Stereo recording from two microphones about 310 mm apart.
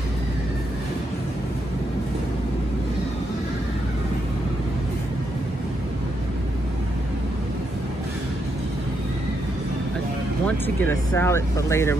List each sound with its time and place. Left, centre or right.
10.4 s speech: centre